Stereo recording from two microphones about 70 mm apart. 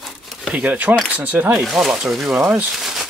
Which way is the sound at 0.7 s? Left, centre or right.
Right.